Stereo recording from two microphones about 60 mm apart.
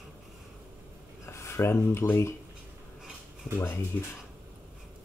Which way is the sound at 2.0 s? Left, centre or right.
Left.